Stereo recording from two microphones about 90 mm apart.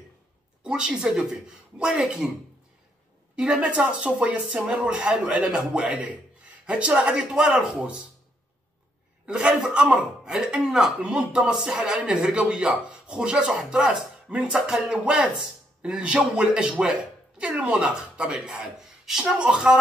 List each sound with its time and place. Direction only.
0.7 s a woman's voice: 10° right (ahead or behind)
3.3 s a man's voice: 15° right (ahead or behind)
9.2 s a man's voice: 10° right (ahead or behind)